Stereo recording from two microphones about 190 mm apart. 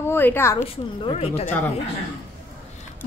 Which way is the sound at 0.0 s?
10° left (ahead or behind).